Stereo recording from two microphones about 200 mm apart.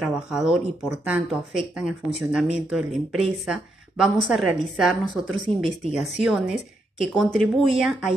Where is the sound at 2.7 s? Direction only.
Centre (ahead or behind).